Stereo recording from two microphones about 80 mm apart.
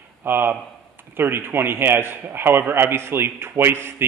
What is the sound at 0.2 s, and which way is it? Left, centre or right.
A man's voice, right.